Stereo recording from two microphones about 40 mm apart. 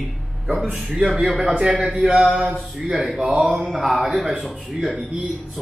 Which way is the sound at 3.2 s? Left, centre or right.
Centre.